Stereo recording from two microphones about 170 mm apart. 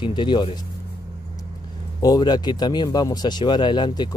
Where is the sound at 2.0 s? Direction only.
25° left (ahead or behind).